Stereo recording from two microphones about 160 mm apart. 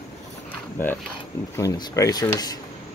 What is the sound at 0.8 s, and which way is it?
Speech, 15° left (ahead or behind).